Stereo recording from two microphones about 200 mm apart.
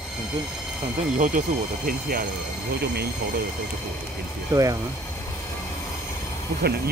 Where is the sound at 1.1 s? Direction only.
40° right (ahead or behind).